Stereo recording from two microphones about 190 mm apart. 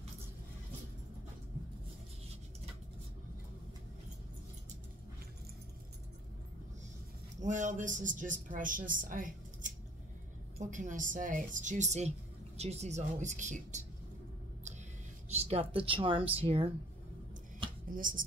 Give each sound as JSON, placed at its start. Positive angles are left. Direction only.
{"t": 7.4, "sound": "speech", "side_deg": -40}
{"t": 10.7, "sound": "speech", "side_deg": -40}
{"t": 15.2, "sound": "speech", "side_deg": -35}
{"t": 17.8, "sound": "speech", "side_deg": -45}